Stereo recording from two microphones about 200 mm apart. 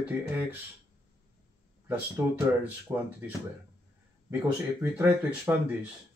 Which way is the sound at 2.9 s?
15° right (ahead or behind).